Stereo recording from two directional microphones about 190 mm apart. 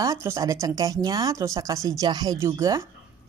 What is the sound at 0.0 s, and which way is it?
Speech, 15° right (ahead or behind).